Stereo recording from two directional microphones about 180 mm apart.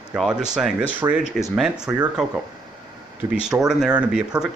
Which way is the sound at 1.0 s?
15° right (ahead or behind).